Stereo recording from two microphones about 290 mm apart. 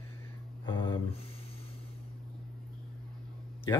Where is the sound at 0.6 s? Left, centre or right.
Centre.